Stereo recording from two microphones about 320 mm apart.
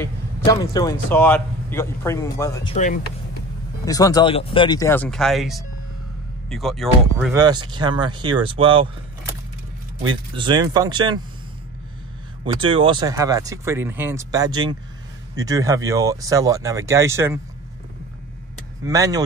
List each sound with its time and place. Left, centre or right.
0.0 s speech: centre
7.3 s speech: centre
10.0 s speech: centre
12.5 s speech: centre
18.9 s speech: centre